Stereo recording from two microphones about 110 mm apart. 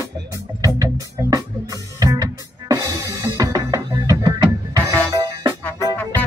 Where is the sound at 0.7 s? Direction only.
30° right (ahead or behind).